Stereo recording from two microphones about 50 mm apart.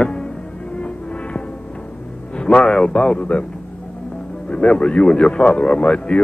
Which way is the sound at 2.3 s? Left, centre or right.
Centre.